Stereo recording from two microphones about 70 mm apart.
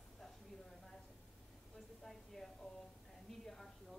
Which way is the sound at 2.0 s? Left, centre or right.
Centre.